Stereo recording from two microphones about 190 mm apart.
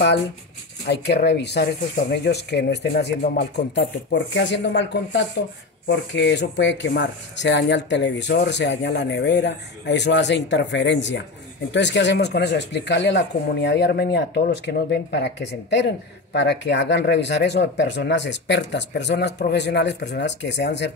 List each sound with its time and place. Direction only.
0.8 s speech: 60° left (ahead or behind)